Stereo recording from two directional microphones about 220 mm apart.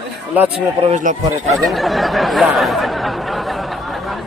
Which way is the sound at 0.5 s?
30° right (ahead or behind).